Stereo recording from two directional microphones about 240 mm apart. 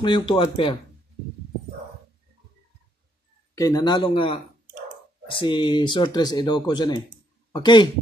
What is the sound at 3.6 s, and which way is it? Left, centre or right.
Speech, centre.